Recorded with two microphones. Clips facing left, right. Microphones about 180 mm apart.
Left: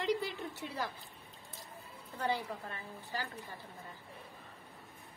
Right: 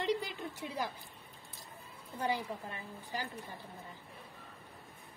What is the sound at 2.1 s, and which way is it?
A woman's voice, 15° right (ahead or behind).